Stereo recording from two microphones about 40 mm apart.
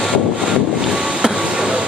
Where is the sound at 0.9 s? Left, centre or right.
Right.